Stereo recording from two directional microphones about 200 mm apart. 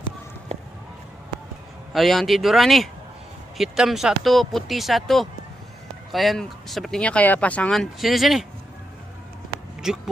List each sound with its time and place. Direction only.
0.5 s a sound: 30° right (ahead or behind)
1.9 s speech: centre (ahead or behind)
9.8 s speech: 5° right (ahead or behind)